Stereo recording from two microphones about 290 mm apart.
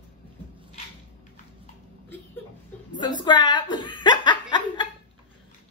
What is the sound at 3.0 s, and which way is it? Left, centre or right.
Chuckle, centre.